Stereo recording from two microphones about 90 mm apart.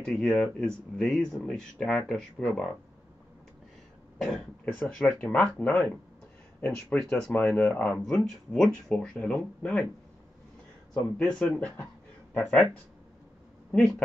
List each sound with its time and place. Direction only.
0.0 s speech: 5° left (ahead or behind)
4.6 s speech: 15° left (ahead or behind)
11.0 s speech: 15° left (ahead or behind)
13.7 s speech: 10° left (ahead or behind)